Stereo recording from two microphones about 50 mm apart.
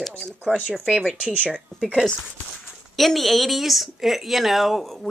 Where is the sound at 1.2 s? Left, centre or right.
Right.